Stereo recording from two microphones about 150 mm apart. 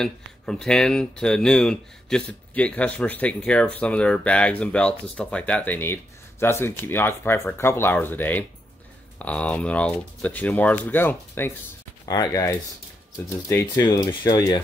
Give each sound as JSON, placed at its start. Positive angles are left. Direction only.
{"t": 0.0, "sound": "speech", "side_deg": 5}